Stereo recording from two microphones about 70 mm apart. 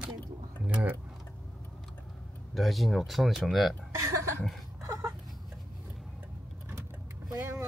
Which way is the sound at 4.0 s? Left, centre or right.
Right.